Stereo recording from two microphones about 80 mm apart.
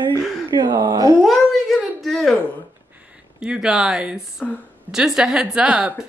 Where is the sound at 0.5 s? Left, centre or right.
Right.